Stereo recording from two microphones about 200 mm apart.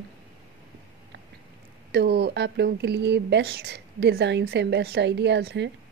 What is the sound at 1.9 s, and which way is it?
Speech, 55° right (ahead or behind).